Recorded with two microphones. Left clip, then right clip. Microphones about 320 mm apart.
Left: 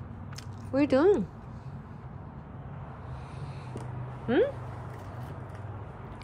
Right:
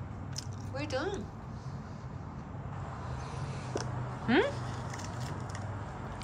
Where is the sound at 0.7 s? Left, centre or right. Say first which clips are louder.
Left 13 dB; left.